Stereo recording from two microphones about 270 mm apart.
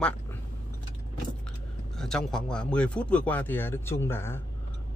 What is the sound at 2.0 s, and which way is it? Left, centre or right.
Speech, centre.